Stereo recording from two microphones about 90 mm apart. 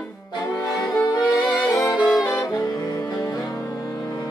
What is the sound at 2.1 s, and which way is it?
Saxophone, 45° left (ahead or behind).